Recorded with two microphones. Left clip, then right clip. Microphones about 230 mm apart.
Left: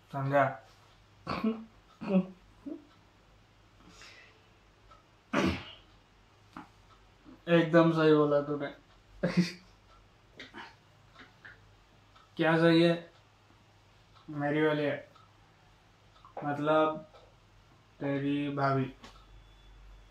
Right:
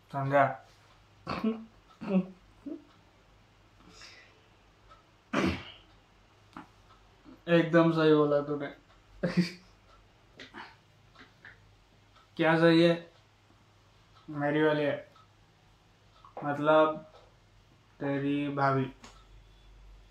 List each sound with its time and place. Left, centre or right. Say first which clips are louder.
0.1 s speech: right 2 dB; centre
1.2 s a sound: even; centre
6.6 s a sound: even; centre
7.4 s a man's voice: even; centre
9.2 s a sound: even; centre
12.4 s speech: right 2 dB; centre
14.3 s speech: right 2 dB; centre
16.4 s speech: right 3 dB; right
17.9 s speech: right 1 dB; right